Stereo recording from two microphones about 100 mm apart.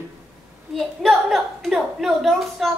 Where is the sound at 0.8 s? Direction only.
Centre (ahead or behind).